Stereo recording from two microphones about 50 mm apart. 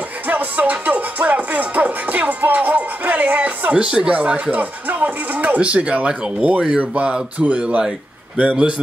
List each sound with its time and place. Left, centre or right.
0.3 s music: right
3.7 s speech: centre
4.5 s music: right
6.2 s speech: right